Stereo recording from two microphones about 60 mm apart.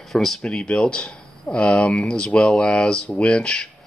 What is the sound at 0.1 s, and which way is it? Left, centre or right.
Speech, centre.